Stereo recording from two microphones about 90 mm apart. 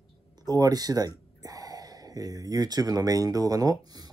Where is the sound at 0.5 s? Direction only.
45° right (ahead or behind).